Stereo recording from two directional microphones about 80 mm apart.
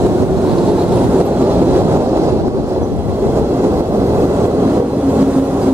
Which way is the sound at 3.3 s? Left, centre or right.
Right.